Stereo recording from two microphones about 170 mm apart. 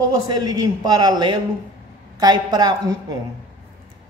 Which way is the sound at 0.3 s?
25° right (ahead or behind).